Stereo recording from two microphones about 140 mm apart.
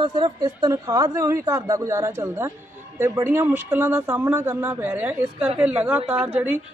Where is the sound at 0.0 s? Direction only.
30° right (ahead or behind).